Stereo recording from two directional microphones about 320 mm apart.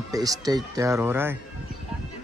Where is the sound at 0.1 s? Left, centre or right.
Centre.